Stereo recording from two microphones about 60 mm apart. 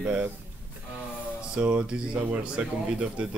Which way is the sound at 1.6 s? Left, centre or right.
Centre.